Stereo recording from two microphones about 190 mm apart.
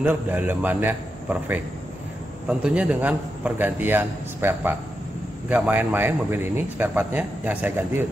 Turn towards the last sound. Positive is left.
turn(degrees=-10)  # may be behind; listen again after turning